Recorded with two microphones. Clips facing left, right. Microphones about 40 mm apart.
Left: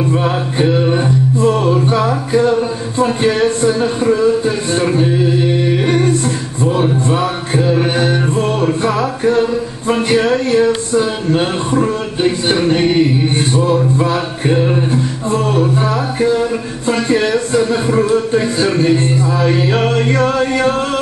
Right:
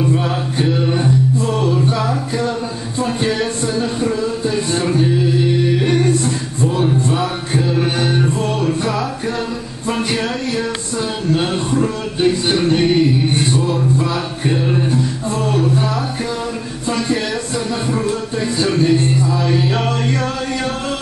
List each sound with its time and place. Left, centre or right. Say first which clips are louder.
0.1 s music: left 3 dB; left
6.8 s mantra: left 1 dB; left
8.4 s music: left 4 dB; left
15.9 s music: left 7 dB; left